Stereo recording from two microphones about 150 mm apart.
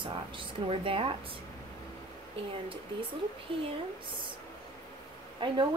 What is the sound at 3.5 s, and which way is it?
Speech, 35° right (ahead or behind).